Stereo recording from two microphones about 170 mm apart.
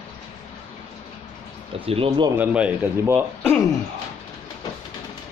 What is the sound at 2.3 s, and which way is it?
Speech, 10° right (ahead or behind).